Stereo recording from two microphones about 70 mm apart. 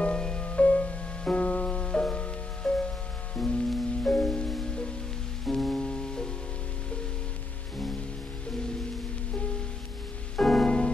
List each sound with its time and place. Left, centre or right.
0.0 s music: centre
10.3 s music: centre